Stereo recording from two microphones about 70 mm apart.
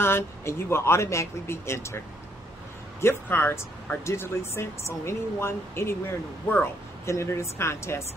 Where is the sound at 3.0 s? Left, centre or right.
Left.